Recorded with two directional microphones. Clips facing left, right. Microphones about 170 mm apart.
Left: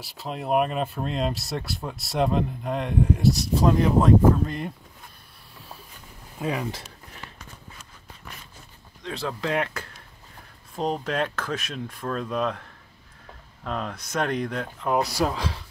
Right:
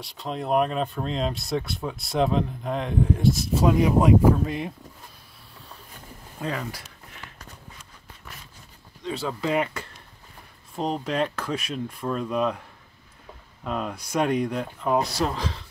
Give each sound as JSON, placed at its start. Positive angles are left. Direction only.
{"t": 0.0, "sound": "speech", "side_deg": 5}
{"t": 6.4, "sound": "speech", "side_deg": 15}
{"t": 9.0, "sound": "speech", "side_deg": 0}
{"t": 13.7, "sound": "speech", "side_deg": -5}
{"t": 15.0, "sound": "speech", "side_deg": 10}
{"t": 15.3, "sound": "speech", "side_deg": 0}